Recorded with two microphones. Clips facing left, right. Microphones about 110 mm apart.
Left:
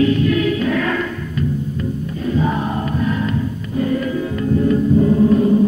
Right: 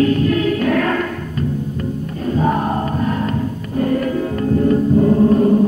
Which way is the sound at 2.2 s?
45° right (ahead or behind).